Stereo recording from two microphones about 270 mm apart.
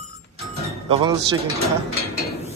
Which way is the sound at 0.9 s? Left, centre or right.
Centre.